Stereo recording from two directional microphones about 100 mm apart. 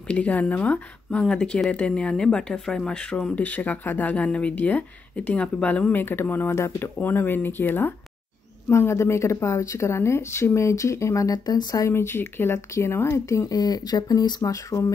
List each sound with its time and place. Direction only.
0.1 s speech: 15° left (ahead or behind); by 11.9 s 40° left (ahead or behind)
11.9 s speech: 25° left (ahead or behind)